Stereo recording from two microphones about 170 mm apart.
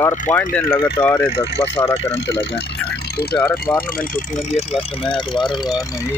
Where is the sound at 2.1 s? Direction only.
80° left.